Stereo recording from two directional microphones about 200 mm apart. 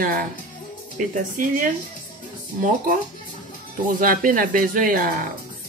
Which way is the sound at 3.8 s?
45° right (ahead or behind).